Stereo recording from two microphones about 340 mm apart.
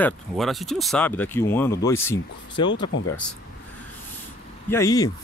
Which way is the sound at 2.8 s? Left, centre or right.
Left.